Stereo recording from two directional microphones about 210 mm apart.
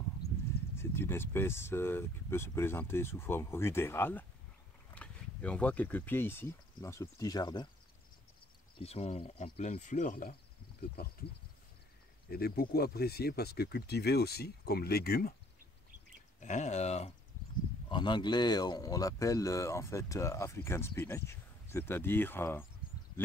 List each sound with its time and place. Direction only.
0.7 s speech: 10° left (ahead or behind)
8.7 s speech: 30° left (ahead or behind)
12.3 s speech: 45° left (ahead or behind)
16.3 s speech: 35° left (ahead or behind); by 22.7 s 10° left (ahead or behind)